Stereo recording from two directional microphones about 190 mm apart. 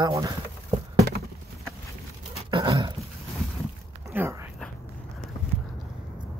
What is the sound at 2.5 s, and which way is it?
Dog, 25° right (ahead or behind).